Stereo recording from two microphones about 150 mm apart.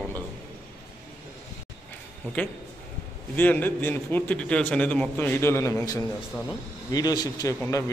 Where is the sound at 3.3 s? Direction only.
10° left (ahead or behind).